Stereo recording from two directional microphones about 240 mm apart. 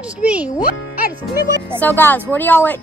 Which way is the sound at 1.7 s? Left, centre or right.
Centre.